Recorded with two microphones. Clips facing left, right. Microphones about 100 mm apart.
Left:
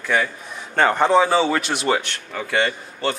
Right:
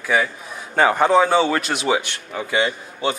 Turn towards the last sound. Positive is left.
turn(degrees=-5)  # may be behind; listen again after turning